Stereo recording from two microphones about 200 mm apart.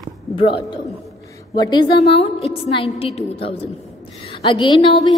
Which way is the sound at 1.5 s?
20° left (ahead or behind).